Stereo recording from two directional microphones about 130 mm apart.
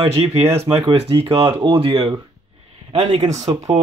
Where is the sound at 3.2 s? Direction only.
30° right (ahead or behind).